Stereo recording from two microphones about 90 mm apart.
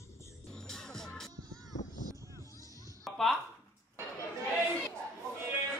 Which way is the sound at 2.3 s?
40° left (ahead or behind).